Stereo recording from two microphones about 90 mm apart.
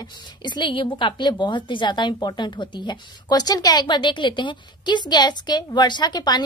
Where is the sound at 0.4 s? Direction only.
60° left (ahead or behind).